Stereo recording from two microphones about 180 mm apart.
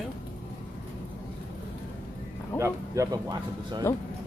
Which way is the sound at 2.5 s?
15° right (ahead or behind).